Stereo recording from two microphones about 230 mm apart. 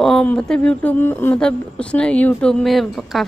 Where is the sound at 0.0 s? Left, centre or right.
Centre.